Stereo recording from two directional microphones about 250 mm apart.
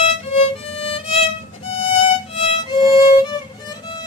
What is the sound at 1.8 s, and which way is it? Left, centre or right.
Music, left.